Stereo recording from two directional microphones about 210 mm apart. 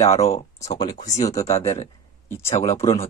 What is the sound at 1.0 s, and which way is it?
Speech, 30° left (ahead or behind).